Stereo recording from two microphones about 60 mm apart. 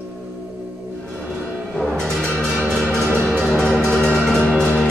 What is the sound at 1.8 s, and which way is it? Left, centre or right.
Music, centre.